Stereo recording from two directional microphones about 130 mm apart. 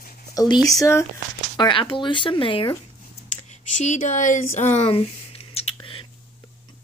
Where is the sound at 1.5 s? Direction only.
35° left (ahead or behind).